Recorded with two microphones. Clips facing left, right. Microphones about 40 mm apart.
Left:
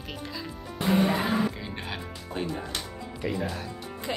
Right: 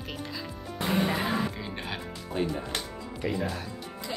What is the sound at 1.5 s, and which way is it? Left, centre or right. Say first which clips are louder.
Speech: even; centre.